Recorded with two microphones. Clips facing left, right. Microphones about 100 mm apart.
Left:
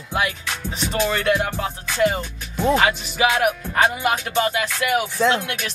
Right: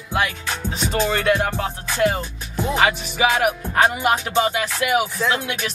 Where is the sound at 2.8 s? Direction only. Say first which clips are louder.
Even; 5° right (ahead or behind).